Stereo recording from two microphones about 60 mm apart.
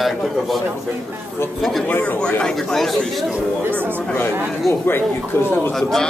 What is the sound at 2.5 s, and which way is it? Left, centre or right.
Speech, centre.